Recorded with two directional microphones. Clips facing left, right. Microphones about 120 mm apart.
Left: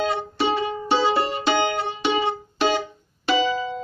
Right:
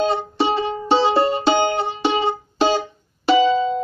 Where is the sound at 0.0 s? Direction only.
25° right (ahead or behind).